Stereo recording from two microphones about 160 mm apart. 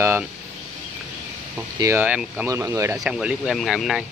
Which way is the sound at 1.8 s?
15° right (ahead or behind).